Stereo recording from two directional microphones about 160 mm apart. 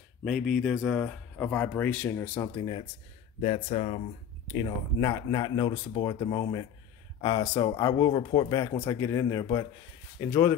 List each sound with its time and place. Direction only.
0.2 s speech: centre (ahead or behind)
2.5 s speech: 30° left (ahead or behind)
4.5 s speech: 25° left (ahead or behind)